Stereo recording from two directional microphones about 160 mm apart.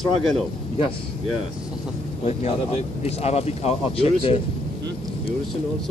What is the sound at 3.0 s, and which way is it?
Speech, 40° left (ahead or behind).